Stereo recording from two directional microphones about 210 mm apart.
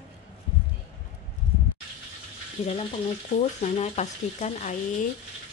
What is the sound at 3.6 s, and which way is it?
Speech, 30° left (ahead or behind).